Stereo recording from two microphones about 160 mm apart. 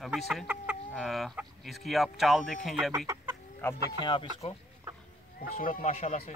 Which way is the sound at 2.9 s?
20° right (ahead or behind).